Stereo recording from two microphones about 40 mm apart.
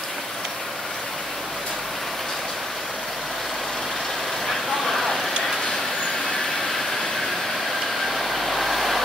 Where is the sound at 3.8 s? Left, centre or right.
Centre.